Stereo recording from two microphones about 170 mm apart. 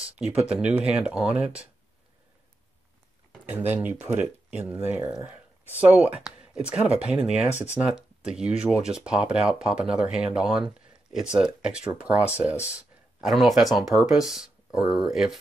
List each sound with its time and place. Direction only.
0.0 s speech: 5° right (ahead or behind)
3.5 s speech: 10° right (ahead or behind)